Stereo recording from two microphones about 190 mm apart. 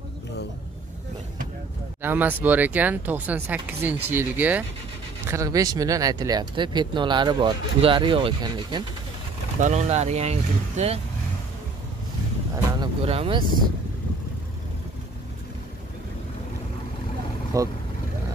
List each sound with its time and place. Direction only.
2.0 s speech: 10° right (ahead or behind)
9.6 s speech: 35° right (ahead or behind)
12.8 s speech: 30° right (ahead or behind)
17.5 s speech: 15° right (ahead or behind)